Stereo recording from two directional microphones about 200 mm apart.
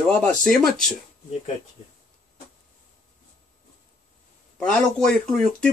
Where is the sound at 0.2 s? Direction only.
5° left (ahead or behind).